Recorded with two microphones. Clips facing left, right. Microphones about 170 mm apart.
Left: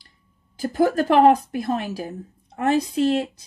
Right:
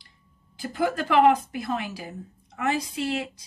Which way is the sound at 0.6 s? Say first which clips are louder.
Left 7 dB; 45° left (ahead or behind).